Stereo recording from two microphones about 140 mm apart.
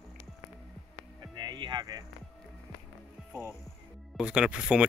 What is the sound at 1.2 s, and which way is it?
Music, 30° right (ahead or behind).